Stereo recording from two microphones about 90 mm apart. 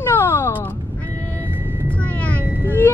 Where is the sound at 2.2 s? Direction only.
20° left (ahead or behind).